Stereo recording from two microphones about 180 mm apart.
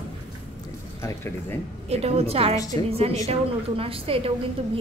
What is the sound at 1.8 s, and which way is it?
Speech, 35° right (ahead or behind).